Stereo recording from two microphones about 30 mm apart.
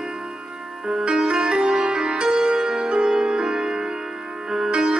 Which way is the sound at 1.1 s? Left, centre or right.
Right.